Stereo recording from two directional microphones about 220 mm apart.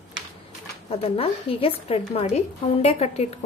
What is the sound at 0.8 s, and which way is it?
A woman's voice, 25° left (ahead or behind).